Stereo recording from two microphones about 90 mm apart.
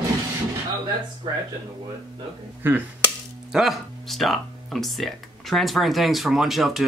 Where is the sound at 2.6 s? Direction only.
20° right (ahead or behind).